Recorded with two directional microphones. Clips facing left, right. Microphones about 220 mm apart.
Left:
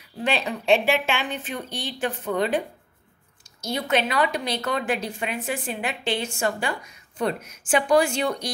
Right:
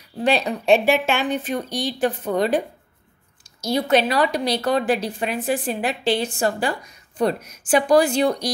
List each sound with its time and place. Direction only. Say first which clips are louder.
0.2 s a woman's voice: right 5 dB; 40° right (ahead or behind)